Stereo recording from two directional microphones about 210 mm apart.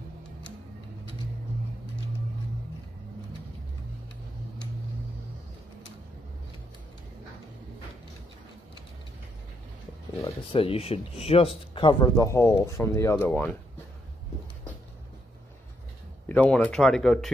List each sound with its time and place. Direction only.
10.5 s speech: 25° left (ahead or behind); by 13.5 s 10° left (ahead or behind)
16.3 s speech: 5° left (ahead or behind)